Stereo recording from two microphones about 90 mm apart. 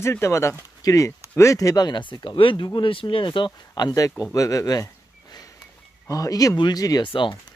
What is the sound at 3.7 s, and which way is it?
Speech, 45° left (ahead or behind).